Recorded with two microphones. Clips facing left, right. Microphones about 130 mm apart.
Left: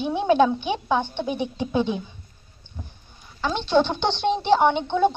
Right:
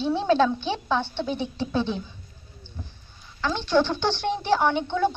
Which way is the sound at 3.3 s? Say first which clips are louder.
Left 2 dB; 20° left (ahead or behind).